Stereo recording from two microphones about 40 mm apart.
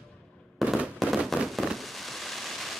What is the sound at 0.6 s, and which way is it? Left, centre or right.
Fireworks, centre.